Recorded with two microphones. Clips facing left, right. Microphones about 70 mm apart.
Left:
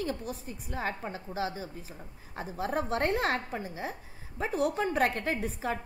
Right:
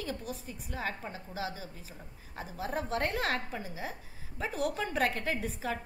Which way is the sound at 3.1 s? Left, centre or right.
Left.